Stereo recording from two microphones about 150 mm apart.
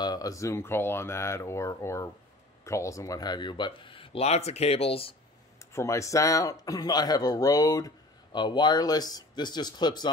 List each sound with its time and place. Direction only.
0.0 s speech: 25° left (ahead or behind)
5.7 s speech: 20° left (ahead or behind)